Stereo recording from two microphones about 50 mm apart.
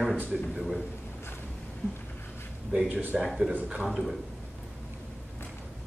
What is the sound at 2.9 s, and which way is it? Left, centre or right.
Speech, right.